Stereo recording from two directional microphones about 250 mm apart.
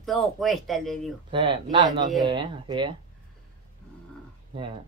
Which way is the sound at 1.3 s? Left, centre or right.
Centre.